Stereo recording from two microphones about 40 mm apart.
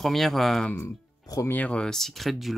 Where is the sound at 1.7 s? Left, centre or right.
Centre.